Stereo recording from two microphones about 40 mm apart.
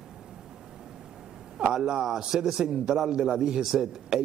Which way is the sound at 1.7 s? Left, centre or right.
Centre.